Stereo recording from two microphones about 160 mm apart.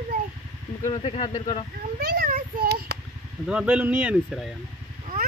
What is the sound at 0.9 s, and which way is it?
Speech, 35° left (ahead or behind).